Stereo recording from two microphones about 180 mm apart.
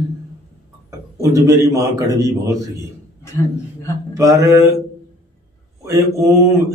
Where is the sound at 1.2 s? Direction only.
15° right (ahead or behind).